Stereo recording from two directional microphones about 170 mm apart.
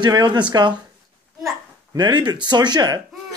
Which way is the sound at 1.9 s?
25° right (ahead or behind).